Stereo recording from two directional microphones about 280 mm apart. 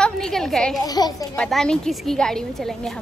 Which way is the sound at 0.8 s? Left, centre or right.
Centre.